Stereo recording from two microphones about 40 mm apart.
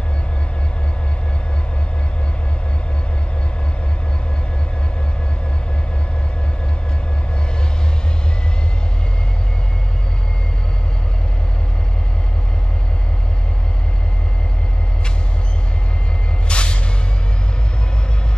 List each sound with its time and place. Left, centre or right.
16.4 s music: left